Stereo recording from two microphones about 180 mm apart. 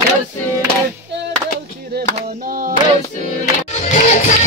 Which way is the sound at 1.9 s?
65° right (ahead or behind).